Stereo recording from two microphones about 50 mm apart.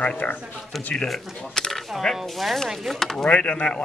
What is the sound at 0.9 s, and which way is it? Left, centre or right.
Speech, centre.